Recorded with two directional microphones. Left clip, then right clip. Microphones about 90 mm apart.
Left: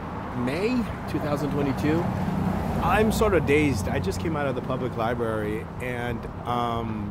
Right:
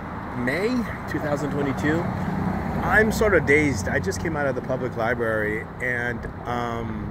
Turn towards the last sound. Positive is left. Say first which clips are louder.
# left 1 dB
turn(degrees=15)  # may be behind; listen again after turning